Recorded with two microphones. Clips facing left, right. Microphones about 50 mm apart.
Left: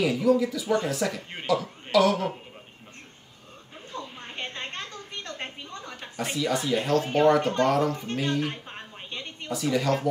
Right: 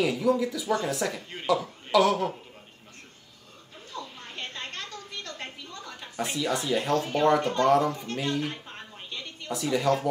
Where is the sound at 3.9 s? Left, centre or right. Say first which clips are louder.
Left 2 dB; left.